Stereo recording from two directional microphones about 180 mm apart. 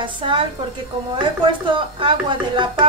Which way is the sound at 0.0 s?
25° right (ahead or behind).